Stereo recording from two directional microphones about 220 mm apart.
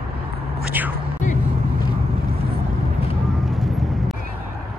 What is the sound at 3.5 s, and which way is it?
Vehicle, centre (ahead or behind).